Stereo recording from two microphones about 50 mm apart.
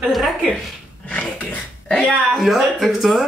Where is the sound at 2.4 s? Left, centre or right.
Centre.